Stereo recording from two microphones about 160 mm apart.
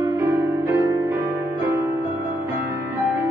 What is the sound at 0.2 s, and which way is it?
Music, 20° right (ahead or behind).